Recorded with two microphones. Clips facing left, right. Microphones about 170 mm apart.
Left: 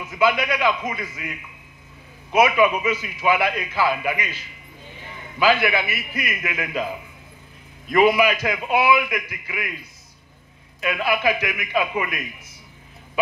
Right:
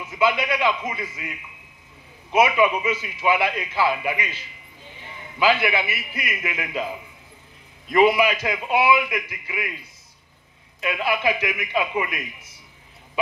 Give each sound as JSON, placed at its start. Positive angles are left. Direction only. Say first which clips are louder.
{"t": 0.1, "sound": "a man's voice", "louder": "left 1 dB", "side_deg": -25}
{"t": 2.3, "sound": "a man's voice", "louder": "left 1 dB", "side_deg": -25}
{"t": 5.4, "sound": "a man's voice", "louder": "left 1 dB", "side_deg": -25}
{"t": 7.9, "sound": "a man's voice", "louder": "left 1 dB", "side_deg": -25}
{"t": 10.8, "sound": "a man's voice", "louder": "left 1 dB", "side_deg": -25}